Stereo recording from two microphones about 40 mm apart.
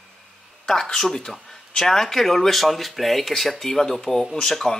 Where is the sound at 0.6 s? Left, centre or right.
Centre.